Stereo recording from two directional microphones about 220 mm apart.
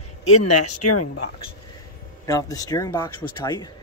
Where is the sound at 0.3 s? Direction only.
90° left.